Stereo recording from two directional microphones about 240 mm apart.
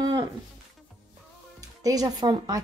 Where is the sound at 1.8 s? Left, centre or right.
Centre.